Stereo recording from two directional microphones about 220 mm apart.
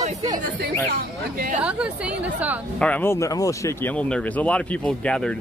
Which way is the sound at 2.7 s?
5° left (ahead or behind).